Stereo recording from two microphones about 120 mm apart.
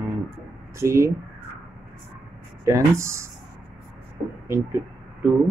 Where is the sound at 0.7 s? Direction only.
25° right (ahead or behind).